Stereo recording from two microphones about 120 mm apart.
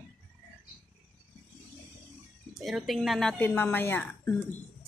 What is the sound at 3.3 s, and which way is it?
Speech, 15° left (ahead or behind).